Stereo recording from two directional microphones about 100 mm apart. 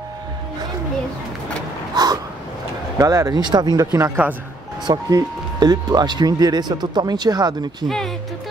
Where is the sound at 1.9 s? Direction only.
40° right (ahead or behind).